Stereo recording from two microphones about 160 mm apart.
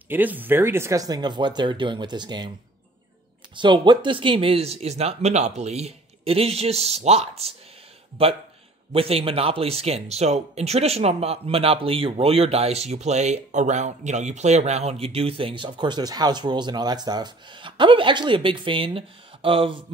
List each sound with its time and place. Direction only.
0.1 s speech: 10° right (ahead or behind); by 2.5 s 25° right (ahead or behind)
3.5 s speech: 30° right (ahead or behind)